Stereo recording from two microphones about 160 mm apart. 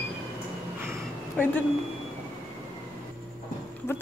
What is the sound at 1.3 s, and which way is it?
Speech, 10° left (ahead or behind).